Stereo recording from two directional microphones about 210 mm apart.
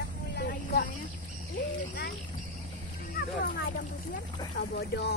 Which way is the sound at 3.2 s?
45° left (ahead or behind).